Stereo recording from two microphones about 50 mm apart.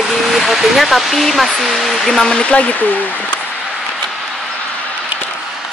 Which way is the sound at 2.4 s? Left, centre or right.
Left.